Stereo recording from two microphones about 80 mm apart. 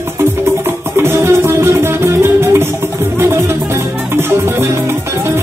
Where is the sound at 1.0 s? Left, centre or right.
Right.